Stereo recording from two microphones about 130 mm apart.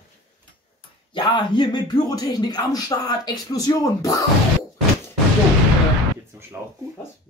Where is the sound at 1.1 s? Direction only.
40° left (ahead or behind).